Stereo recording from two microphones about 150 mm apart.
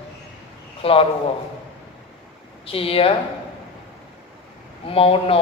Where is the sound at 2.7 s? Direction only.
40° left (ahead or behind).